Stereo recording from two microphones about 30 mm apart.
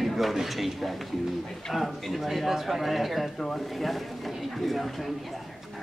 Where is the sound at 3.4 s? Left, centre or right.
Centre.